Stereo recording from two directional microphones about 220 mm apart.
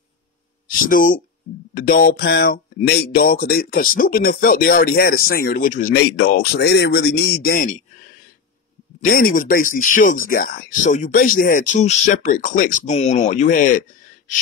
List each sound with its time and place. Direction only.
0.7 s speech: 40° left (ahead or behind)
9.0 s speech: 40° left (ahead or behind)